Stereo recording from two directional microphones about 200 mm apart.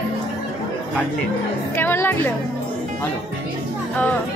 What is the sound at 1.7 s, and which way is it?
Speech, 10° left (ahead or behind).